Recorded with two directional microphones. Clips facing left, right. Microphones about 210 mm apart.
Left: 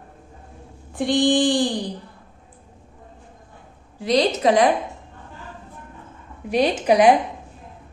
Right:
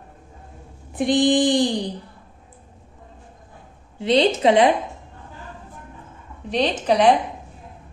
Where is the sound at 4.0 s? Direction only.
25° right (ahead or behind).